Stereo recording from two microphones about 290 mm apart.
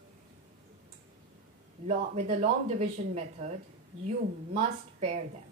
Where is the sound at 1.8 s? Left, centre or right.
Right.